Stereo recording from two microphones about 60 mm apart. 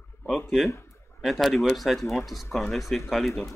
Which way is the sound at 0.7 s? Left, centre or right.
Left.